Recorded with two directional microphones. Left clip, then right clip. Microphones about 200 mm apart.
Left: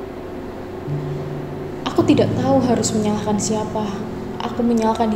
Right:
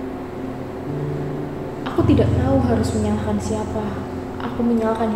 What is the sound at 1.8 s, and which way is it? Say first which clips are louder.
A woman's voice: left 2 dB; 35° left (ahead or behind).